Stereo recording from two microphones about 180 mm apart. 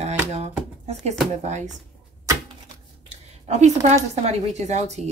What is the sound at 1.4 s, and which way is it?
Speech, 40° right (ahead or behind).